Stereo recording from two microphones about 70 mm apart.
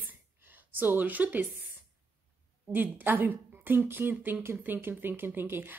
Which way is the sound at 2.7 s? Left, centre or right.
Right.